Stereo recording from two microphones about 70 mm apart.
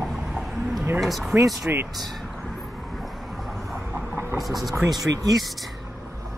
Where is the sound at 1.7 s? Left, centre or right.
Right.